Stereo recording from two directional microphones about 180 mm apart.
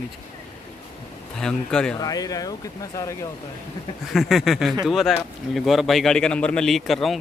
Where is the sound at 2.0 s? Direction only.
20° left (ahead or behind).